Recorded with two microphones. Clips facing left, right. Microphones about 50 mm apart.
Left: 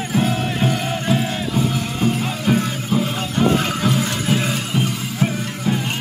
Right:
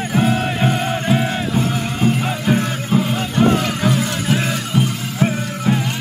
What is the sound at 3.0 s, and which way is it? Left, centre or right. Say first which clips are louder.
Music: right 4 dB; centre.